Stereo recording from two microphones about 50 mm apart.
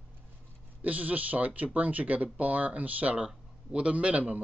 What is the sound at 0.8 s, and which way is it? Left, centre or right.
A man's voice, right.